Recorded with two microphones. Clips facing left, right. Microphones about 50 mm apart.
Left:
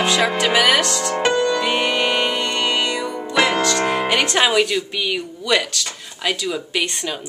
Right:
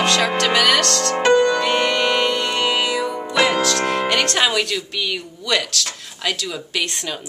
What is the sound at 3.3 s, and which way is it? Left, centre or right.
Speech, centre.